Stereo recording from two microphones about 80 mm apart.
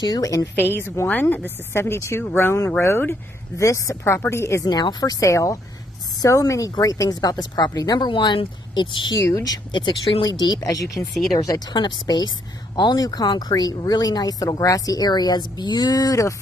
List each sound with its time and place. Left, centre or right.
0.0 s speech: left
0.6 s a woman's voice: left
4.6 s speech: left
8.1 s speech: left
9.1 s speech: left
9.7 s speech: left
10.7 s speech: left
11.7 s speech: left